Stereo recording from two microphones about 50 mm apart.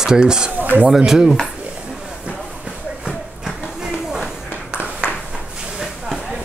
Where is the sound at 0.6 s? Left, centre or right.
Right.